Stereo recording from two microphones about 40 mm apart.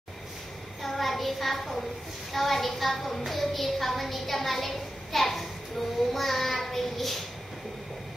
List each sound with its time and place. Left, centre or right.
0.8 s a child's voice: centre
6.1 s child singing: centre